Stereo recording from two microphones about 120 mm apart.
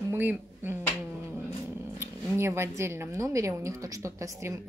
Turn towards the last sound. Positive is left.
turn(degrees=-25)  # may be behind; listen again after turning